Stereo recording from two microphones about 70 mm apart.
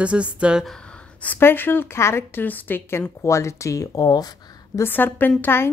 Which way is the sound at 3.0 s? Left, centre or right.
Left.